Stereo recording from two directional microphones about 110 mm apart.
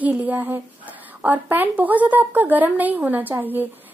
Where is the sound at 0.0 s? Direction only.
15° right (ahead or behind).